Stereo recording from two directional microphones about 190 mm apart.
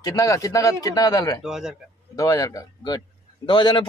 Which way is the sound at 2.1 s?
20° left (ahead or behind).